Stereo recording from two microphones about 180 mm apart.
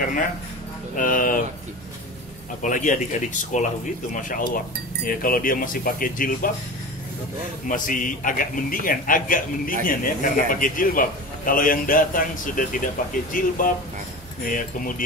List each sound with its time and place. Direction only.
0.9 s a man's voice: 50° left (ahead or behind)
2.6 s a man's voice: 45° left (ahead or behind)
7.6 s a man's voice: 50° left (ahead or behind)